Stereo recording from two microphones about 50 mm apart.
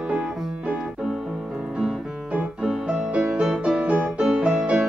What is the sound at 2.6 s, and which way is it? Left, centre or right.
Music, centre.